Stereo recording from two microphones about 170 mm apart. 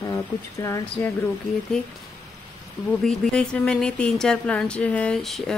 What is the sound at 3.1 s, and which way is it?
Speech, 5° left (ahead or behind).